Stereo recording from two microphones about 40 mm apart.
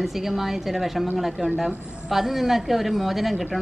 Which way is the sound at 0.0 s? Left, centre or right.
Centre.